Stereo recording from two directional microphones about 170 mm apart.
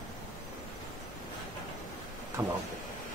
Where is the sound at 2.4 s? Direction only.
25° right (ahead or behind).